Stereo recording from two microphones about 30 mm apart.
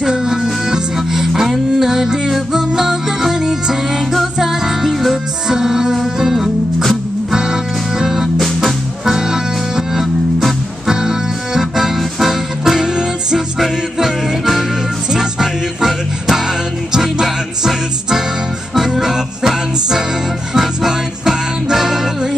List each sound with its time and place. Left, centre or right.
0.0 s music: right